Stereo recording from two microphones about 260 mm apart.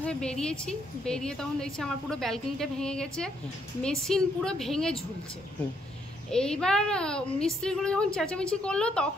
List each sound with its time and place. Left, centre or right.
0.0 s a woman's voice: centre
6.3 s a woman's voice: centre